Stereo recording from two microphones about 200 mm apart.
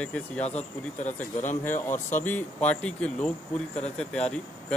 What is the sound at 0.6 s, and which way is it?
A man's voice, 35° left (ahead or behind).